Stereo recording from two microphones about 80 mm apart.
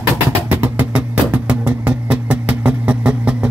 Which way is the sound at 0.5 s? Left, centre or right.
Right.